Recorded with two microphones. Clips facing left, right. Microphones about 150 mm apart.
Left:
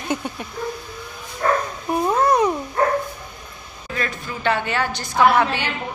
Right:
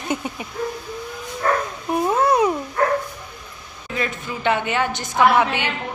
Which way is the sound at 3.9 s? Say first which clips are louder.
Right 2 dB; 20° right (ahead or behind).